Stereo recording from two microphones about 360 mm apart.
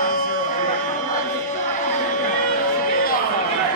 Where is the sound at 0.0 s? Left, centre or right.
Left.